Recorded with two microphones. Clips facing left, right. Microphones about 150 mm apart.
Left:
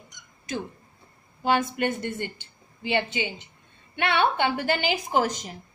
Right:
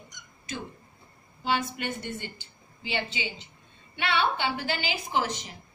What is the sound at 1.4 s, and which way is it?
A woman's voice, 50° left (ahead or behind).